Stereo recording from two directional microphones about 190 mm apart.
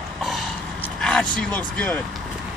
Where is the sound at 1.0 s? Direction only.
5° left (ahead or behind).